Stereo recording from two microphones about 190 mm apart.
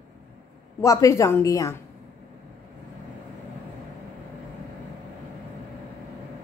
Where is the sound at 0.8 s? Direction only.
15° left (ahead or behind).